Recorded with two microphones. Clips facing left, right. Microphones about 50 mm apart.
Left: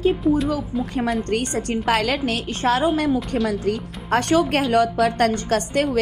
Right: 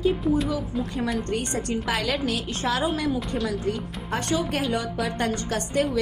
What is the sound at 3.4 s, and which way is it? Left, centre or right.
Speech, left.